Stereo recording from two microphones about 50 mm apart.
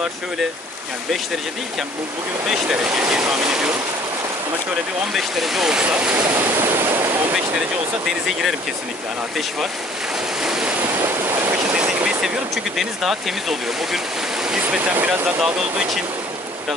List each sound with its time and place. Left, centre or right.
2.4 s speech: centre
5.1 s speech: centre
5.9 s speech: right
6.1 s waves: right
11.0 s waves: right
11.7 s vehicle: right
12.2 s speech: centre
14.8 s speech: right
15.4 s speech: centre